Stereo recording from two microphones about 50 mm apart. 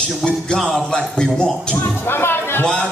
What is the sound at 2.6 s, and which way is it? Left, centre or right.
Speech, centre.